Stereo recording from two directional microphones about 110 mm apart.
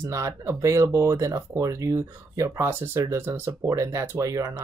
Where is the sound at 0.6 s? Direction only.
30° right (ahead or behind).